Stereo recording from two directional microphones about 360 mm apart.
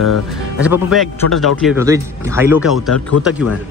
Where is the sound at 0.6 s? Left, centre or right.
Centre.